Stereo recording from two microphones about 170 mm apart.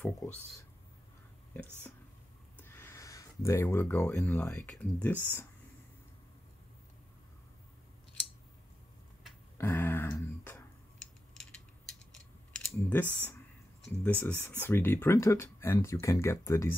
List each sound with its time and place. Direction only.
2.6 s speech: 15° left (ahead or behind)
9.6 s a sound: 15° left (ahead or behind)
12.5 s typing: 5° left (ahead or behind)
13.8 s speech: 10° left (ahead or behind)